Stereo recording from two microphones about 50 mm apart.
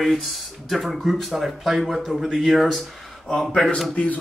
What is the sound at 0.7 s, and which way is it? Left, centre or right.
Speech, centre.